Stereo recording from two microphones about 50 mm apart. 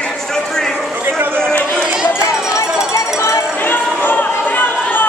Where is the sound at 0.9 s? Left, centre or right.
Right.